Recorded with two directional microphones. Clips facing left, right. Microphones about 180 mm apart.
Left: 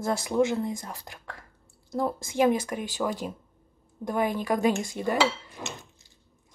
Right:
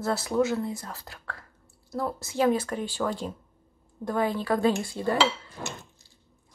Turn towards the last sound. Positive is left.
turn(degrees=15)  # may be behind; listen again after turning